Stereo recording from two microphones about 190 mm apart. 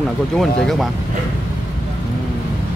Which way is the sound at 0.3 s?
Centre (ahead or behind).